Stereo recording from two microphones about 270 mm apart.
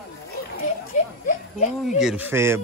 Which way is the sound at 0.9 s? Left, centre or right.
Left.